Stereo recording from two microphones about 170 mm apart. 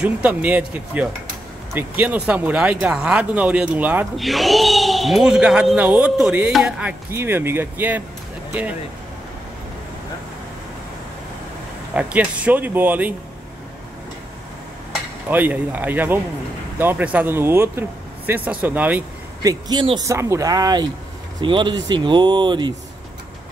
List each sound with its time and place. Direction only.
0.0 s speech: 10° right (ahead or behind)
4.2 s speech: centre (ahead or behind)
11.9 s speech: 10° right (ahead or behind)
15.2 s speech: 10° right (ahead or behind)
19.4 s speech: 25° right (ahead or behind)